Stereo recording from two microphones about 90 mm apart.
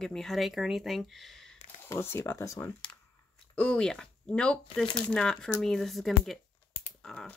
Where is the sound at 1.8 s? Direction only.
25° left (ahead or behind).